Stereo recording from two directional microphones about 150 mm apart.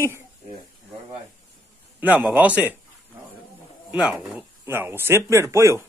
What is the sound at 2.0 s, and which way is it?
Speech, 10° right (ahead or behind).